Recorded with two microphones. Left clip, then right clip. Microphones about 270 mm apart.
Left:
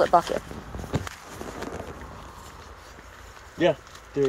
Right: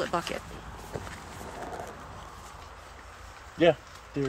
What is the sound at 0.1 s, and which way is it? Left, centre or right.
Speech, centre.